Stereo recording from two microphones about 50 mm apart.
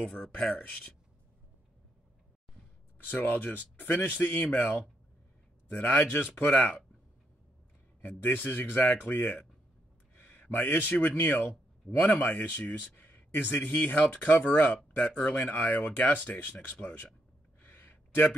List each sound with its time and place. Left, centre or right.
0.3 s speech: left
3.1 s speech: left
8.0 s speech: left
9.0 s speech: left
17.6 s gasp: left